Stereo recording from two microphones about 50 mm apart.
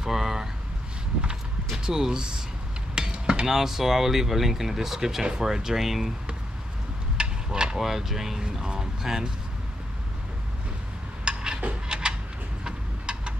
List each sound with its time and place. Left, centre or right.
0.0 s a sound: centre
1.8 s speech: centre
2.9 s cutlery: centre
3.4 s speech: centre
7.2 s speech: centre
11.3 s a sound: centre